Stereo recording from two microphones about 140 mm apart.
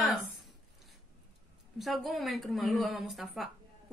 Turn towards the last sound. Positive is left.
turn(degrees=0)  # may be behind; listen again after turning